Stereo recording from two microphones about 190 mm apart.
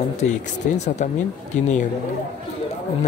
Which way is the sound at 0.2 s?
35° left (ahead or behind).